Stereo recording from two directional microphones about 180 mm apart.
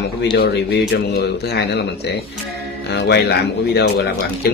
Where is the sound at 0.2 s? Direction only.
65° left (ahead or behind).